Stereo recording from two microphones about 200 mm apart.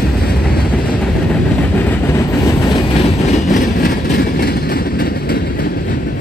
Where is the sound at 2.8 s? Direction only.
30° left (ahead or behind).